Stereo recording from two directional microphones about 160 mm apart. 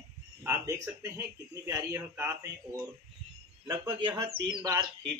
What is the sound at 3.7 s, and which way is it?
Speech, 30° right (ahead or behind).